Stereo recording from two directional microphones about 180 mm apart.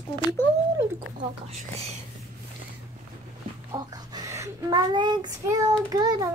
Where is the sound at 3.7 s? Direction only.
20° right (ahead or behind).